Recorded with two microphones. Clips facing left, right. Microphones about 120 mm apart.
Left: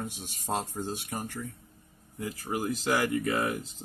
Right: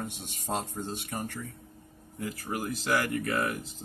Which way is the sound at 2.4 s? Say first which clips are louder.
Left 4 dB; 15° left (ahead or behind).